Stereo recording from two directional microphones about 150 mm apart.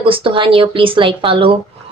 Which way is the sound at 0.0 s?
35° right (ahead or behind).